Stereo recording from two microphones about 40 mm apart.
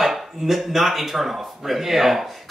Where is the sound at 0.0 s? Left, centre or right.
Centre.